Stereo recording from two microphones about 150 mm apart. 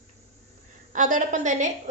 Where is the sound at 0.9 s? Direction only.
60° right (ahead or behind).